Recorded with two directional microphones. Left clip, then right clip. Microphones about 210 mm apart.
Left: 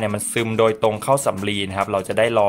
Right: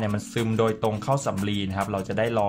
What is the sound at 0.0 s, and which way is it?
Speech, 20° left (ahead or behind).